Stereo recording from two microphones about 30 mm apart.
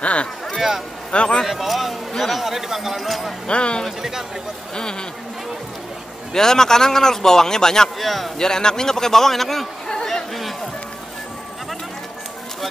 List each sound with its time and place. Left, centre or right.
0.0 s speech: left
0.6 s speech: centre
1.1 s speech: left
1.4 s speech: centre
2.4 s speech: centre
3.4 s speech: left
6.3 s a man's voice: centre
8.0 s speech: centre
8.4 s a man's voice: left